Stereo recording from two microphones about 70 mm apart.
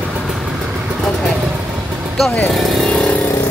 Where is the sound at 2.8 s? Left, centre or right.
Centre.